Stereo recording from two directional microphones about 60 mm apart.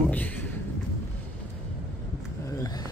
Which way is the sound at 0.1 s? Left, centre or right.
Left.